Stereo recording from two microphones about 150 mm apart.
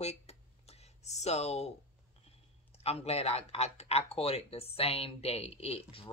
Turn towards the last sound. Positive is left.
turn(degrees=40)  # may be behind; listen again after turning